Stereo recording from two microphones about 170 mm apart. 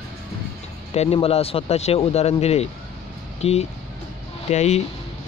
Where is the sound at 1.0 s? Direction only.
35° left (ahead or behind).